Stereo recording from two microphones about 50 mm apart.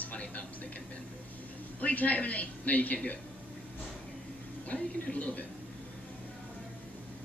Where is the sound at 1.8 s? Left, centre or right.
Left.